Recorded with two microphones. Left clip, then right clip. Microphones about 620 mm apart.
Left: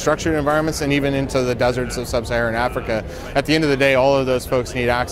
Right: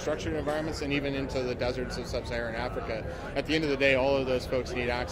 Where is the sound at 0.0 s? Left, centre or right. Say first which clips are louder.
Left 13 dB; left.